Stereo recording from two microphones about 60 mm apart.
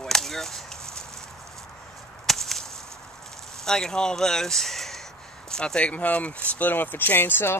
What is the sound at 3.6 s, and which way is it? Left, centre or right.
Speech, centre.